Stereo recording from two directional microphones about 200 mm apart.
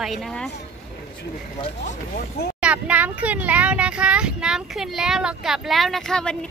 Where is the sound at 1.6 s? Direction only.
40° left (ahead or behind).